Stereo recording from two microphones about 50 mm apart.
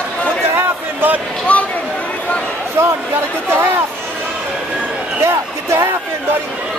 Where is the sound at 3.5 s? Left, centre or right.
Right.